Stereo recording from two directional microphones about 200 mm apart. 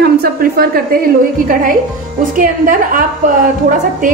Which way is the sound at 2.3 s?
45° right (ahead or behind).